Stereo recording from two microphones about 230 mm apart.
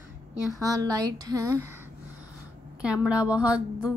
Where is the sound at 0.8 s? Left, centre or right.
Centre.